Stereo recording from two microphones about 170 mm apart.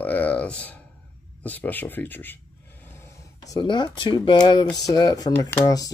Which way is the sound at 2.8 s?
15° left (ahead or behind).